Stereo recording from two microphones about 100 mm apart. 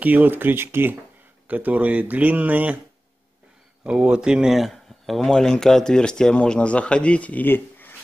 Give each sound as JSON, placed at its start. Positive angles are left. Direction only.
{"t": 0.0, "sound": "speech", "side_deg": -15}
{"t": 3.8, "sound": "speech", "side_deg": -10}